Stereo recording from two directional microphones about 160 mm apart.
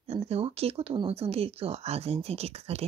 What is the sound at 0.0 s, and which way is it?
Speech, 40° right (ahead or behind).